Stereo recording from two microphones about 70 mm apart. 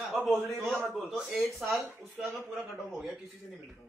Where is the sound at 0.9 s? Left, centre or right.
Centre.